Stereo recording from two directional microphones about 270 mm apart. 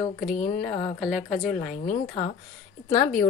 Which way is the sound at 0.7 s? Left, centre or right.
Centre.